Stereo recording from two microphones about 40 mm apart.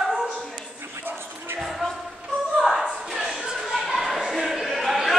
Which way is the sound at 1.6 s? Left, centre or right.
Centre.